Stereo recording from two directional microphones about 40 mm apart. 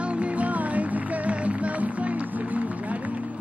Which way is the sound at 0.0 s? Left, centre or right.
Right.